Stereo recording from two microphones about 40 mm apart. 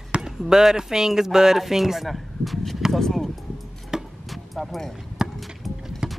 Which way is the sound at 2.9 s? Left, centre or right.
Centre.